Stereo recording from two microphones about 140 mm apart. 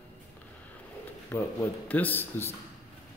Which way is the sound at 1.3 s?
15° left (ahead or behind).